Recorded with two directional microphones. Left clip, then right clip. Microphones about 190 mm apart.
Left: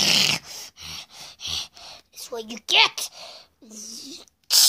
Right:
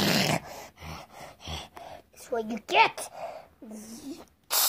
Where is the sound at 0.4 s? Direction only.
30° left (ahead or behind).